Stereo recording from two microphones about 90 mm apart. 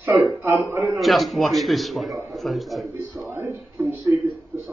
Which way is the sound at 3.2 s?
30° right (ahead or behind).